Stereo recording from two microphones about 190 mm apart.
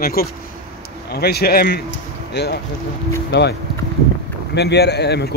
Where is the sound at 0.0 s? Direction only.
55° left (ahead or behind).